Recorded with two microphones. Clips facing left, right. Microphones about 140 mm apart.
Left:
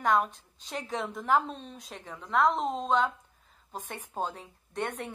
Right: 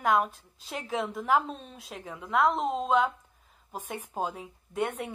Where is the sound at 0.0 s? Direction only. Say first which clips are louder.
Right 1 dB; 5° right (ahead or behind).